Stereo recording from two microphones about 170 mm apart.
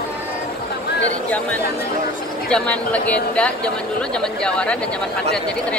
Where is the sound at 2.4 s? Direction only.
5° left (ahead or behind).